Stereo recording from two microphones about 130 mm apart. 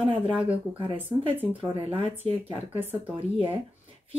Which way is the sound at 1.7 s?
45° right (ahead or behind).